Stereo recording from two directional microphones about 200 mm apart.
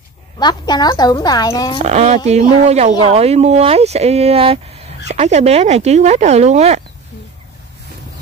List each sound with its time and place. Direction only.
0.4 s a woman's voice: 20° left (ahead or behind)
1.8 s speech: 35° right (ahead or behind)